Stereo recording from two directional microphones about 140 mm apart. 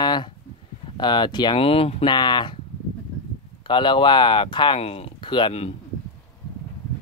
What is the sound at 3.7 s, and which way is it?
Speech, 35° left (ahead or behind).